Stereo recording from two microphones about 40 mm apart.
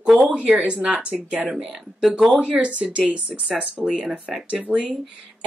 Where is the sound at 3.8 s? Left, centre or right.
Right.